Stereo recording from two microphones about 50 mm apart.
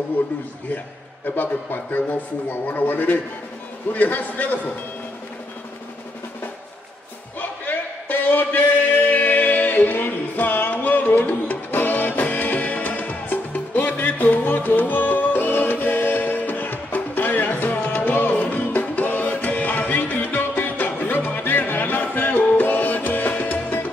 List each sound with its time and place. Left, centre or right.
1.2 s speech: left
7.3 s a sound: left
19.3 s music: left